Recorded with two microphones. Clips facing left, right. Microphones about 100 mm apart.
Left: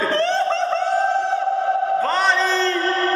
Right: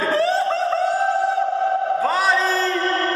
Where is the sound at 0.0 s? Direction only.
5° right (ahead or behind).